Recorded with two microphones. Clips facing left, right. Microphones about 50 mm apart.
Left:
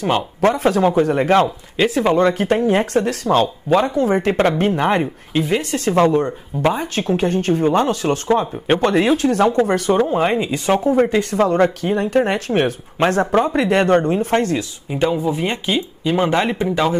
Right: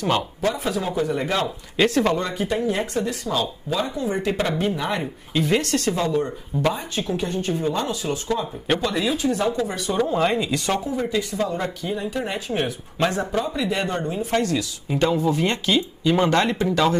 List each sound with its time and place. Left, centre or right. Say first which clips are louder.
0.4 s speech: left 9 dB; left
1.8 s speech: left 3 dB; centre
2.1 s speech: left 9 dB; left
5.4 s speech: left 1 dB; centre
5.9 s speech: left 8 dB; left
9.9 s speech: left 4 dB; left
10.8 s speech: left 9 dB; left
14.3 s speech: left 2 dB; left
14.9 s speech: left 2 dB; centre